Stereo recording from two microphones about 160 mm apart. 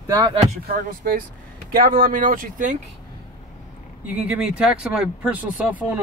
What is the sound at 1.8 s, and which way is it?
Speech, 65° right (ahead or behind).